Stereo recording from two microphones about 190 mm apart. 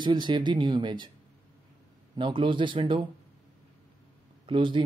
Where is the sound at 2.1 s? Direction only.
25° right (ahead or behind).